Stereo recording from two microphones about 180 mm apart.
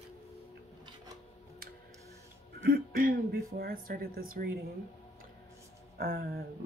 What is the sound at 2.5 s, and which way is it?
Speech, 55° right (ahead or behind).